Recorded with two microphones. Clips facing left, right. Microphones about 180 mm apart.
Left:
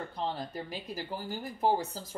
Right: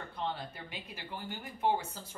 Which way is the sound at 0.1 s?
40° left (ahead or behind).